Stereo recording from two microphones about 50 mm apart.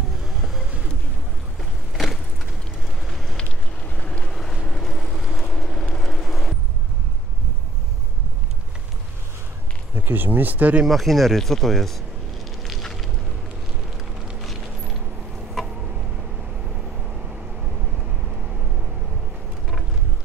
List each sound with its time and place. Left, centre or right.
0.4 s vehicle: centre
1.6 s vehicle: centre
3.1 s fire: centre
3.3 s vehicle: left
4.3 s boat: centre
4.6 s vehicle: centre
9.9 s speech: right
10.9 s speech: centre
12.6 s fire: centre